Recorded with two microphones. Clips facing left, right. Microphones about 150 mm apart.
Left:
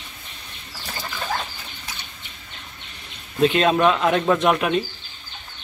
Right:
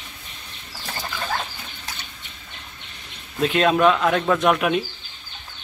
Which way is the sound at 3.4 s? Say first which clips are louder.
Even; centre (ahead or behind).